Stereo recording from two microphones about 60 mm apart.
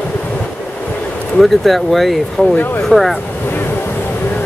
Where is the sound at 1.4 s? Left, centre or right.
Centre.